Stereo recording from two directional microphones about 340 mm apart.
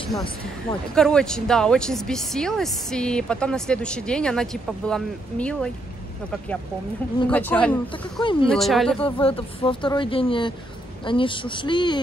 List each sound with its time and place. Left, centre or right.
0.7 s speech: centre
7.2 s speech: centre
8.5 s speech: centre
9.0 s speech: centre